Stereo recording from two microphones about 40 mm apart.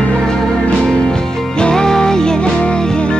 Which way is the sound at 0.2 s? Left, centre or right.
Centre.